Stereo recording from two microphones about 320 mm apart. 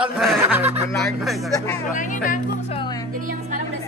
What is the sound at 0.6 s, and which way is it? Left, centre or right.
Speech, centre.